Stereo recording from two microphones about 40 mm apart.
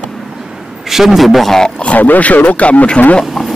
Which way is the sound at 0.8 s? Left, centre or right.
Centre.